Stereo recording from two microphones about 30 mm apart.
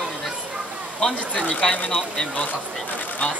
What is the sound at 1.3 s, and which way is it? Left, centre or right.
Speech, left.